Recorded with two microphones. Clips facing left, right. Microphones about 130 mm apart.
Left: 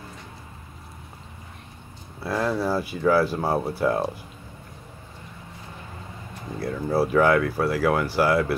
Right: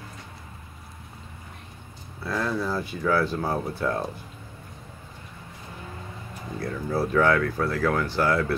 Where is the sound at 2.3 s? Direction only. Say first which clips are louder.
Left 3 dB; 20° left (ahead or behind).